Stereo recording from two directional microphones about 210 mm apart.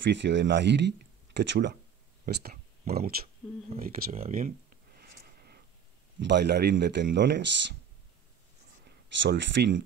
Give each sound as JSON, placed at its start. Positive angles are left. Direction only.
{"t": 0.0, "sound": "speech", "side_deg": -55}
{"t": 2.2, "sound": "speech", "side_deg": -40}
{"t": 3.8, "sound": "a sound", "side_deg": -45}
{"t": 6.2, "sound": "speech", "side_deg": -55}
{"t": 8.8, "sound": "speech", "side_deg": -55}